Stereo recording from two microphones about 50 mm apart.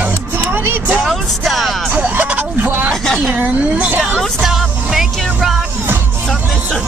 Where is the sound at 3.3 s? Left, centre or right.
Right.